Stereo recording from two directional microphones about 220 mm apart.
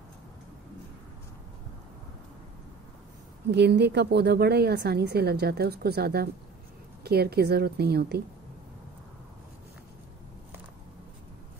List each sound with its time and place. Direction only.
3.5 s a woman's voice: 50° right (ahead or behind)